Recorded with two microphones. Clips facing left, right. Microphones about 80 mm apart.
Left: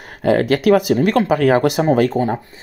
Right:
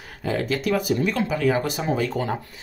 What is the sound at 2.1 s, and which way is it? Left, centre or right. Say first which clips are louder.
Speech: left 7 dB; left.